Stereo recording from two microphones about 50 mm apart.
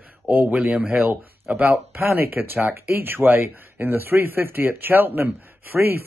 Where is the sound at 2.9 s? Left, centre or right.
Right.